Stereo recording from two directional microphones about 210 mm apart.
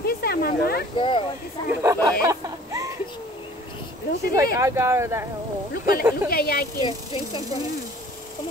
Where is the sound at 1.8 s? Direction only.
15° right (ahead or behind).